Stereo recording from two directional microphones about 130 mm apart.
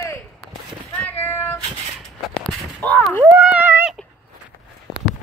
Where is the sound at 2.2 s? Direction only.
5° left (ahead or behind).